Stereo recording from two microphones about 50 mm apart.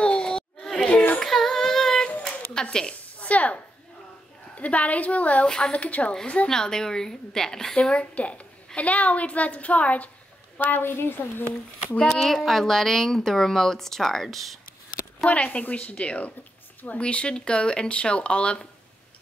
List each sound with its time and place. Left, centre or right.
0.0 s a sound: centre
0.9 s child singing: left
1.2 s child singing: centre
2.5 s a sound: centre
4.6 s a woman's voice: left; by 7.7 s centre
7.7 s speech: left
10.6 s a woman's voice: left
12.1 s a woman's voice: centre
15.2 s speech: left